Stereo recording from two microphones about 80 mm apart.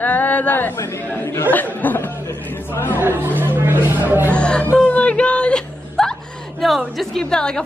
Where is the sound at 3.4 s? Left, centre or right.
Right.